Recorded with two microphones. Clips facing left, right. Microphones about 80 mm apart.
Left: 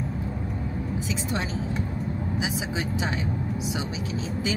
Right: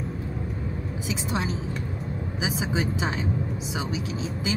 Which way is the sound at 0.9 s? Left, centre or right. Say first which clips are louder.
Right 1 dB; centre.